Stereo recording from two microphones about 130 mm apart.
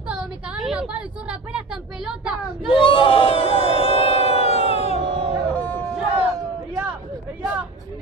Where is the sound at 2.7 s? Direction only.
45° left (ahead or behind).